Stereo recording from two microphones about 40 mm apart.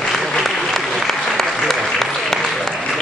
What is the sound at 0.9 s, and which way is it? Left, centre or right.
Applause, centre.